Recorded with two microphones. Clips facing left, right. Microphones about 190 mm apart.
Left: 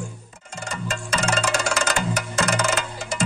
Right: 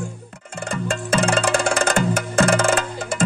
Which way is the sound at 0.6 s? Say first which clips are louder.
Right 5 dB; 55° right (ahead or behind).